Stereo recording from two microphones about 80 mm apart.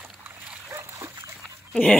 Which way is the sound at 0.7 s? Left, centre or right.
Right.